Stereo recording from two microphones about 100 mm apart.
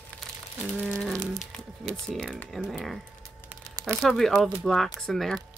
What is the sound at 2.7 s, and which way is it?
Speech, centre (ahead or behind).